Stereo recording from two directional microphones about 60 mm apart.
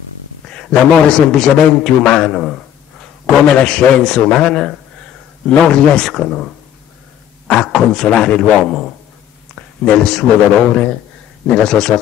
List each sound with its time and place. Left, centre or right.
0.5 s a man's voice: centre
11.4 s a man's voice: centre